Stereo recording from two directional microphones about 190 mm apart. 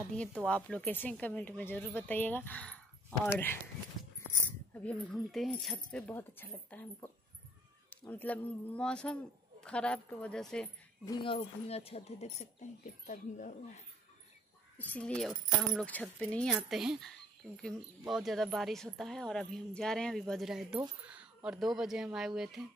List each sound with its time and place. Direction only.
0.1 s a woman's voice: 5° left (ahead or behind)
4.7 s speech: 5° left (ahead or behind)
8.1 s a woman's voice: 10° left (ahead or behind)
11.1 s speech: 30° left (ahead or behind)
14.8 s a woman's voice: 10° left (ahead or behind)